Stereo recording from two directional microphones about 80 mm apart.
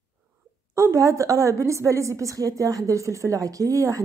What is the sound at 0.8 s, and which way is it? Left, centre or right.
A woman's voice, right.